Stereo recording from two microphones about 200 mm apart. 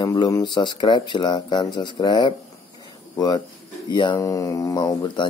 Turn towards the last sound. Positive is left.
turn(degrees=20)  # may be behind; listen again after turning